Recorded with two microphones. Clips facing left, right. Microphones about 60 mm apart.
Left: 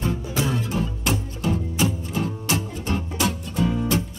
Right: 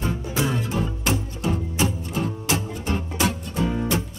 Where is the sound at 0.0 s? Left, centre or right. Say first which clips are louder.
Even; centre.